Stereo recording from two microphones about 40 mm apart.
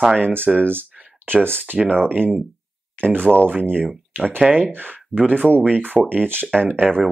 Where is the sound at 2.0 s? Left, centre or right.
Right.